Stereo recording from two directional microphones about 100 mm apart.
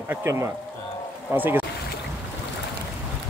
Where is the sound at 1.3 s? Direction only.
20° right (ahead or behind).